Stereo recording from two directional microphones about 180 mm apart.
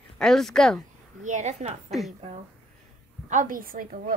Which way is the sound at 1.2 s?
40° right (ahead or behind).